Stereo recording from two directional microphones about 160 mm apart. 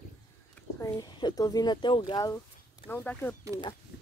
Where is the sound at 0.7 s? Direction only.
20° left (ahead or behind).